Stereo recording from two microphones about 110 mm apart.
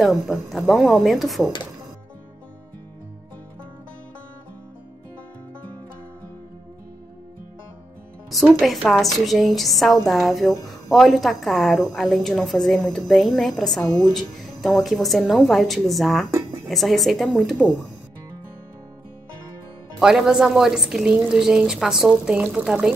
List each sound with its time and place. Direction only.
0.0 s a woman's voice: centre (ahead or behind)
8.5 s a woman's voice: 5° left (ahead or behind)
13.8 s speech: 35° left (ahead or behind)
14.1 s a woman's voice: centre (ahead or behind)
20.0 s a woman's voice: 5° right (ahead or behind)